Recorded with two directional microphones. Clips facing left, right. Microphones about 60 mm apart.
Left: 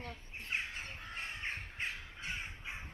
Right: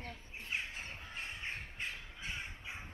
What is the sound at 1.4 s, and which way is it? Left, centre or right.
Bird, left.